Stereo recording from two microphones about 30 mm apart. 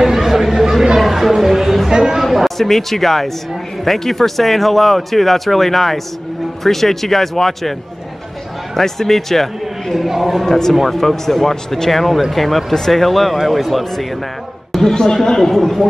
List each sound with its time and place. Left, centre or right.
0.0 s chatter: centre
0.9 s music: centre
1.9 s chatter: centre
2.2 s speech: centre
8.7 s a man's voice: centre
9.9 s speech: centre
10.4 s speech: centre
14.7 s chatter: centre
15.2 s speech: centre